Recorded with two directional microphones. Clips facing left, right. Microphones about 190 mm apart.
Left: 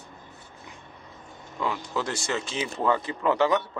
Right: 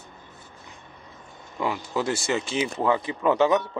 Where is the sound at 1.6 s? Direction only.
10° right (ahead or behind).